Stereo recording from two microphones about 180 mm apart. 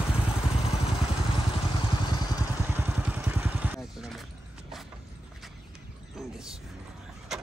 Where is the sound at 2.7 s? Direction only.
10° right (ahead or behind).